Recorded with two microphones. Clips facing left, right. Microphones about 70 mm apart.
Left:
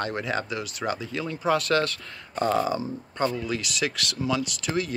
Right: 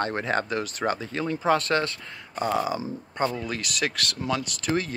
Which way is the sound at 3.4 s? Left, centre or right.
Right.